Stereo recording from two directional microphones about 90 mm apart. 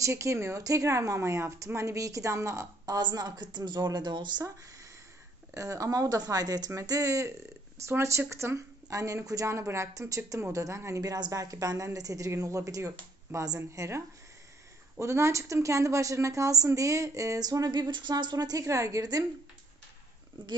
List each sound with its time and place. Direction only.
0.0 s speech: 35° right (ahead or behind); by 4.5 s 55° right (ahead or behind)
5.5 s speech: 35° right (ahead or behind)
11.1 s speech: 45° right (ahead or behind)
18.6 s speech: 35° right (ahead or behind)
20.4 s speech: 65° right (ahead or behind)